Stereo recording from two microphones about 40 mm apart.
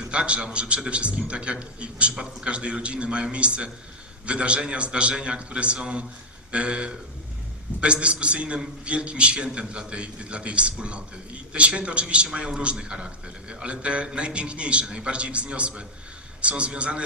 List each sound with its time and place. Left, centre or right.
0.0 s a man's voice: right